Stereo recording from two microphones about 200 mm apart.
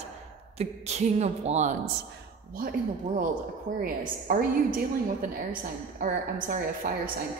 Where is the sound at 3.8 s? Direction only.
45° right (ahead or behind).